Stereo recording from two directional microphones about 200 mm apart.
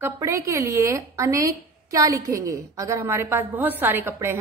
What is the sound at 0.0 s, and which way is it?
A woman's voice, 15° right (ahead or behind).